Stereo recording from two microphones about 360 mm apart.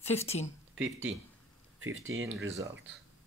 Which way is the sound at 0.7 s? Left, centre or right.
Centre.